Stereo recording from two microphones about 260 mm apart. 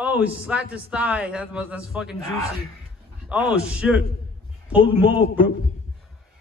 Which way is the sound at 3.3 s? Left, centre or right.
Centre.